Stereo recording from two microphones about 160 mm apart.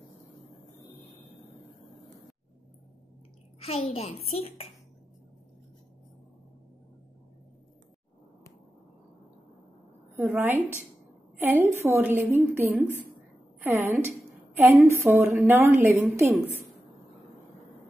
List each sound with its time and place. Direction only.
3.6 s a child's voice: 40° left (ahead or behind)
10.1 s a woman's voice: 15° right (ahead or behind)
11.6 s a woman's voice: 15° right (ahead or behind)